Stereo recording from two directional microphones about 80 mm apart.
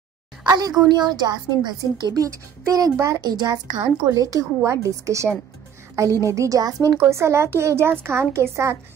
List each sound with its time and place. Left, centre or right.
0.4 s a woman's voice: right
2.2 s a woman's voice: right
3.3 s a woman's voice: right
7.0 s a woman's voice: right